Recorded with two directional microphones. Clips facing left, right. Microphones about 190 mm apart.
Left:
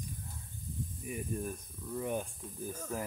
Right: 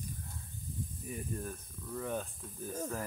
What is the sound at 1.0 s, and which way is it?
Speech, 15° left (ahead or behind).